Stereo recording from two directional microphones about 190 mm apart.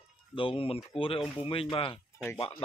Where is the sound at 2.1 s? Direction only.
10° left (ahead or behind).